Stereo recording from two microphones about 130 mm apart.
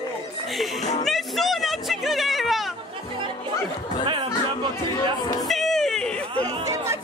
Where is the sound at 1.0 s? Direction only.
Centre (ahead or behind).